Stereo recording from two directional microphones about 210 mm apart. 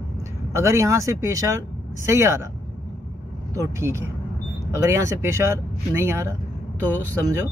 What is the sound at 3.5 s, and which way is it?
Speech, 15° right (ahead or behind).